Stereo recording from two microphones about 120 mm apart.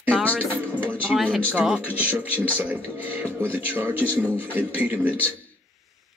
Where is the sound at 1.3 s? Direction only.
5° right (ahead or behind).